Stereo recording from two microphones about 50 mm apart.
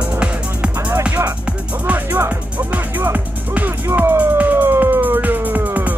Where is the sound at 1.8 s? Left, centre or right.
Right.